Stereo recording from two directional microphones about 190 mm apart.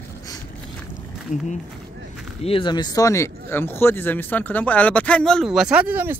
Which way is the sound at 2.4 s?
25° left (ahead or behind).